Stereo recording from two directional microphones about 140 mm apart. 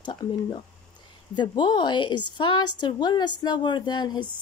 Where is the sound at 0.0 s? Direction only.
30° left (ahead or behind).